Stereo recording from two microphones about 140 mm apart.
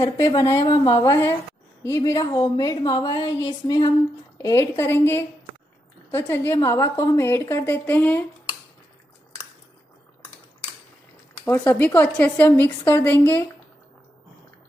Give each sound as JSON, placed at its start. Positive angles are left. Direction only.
{"t": 0.0, "sound": "a woman's voice", "side_deg": 25}
{"t": 11.3, "sound": "a woman's voice", "side_deg": 15}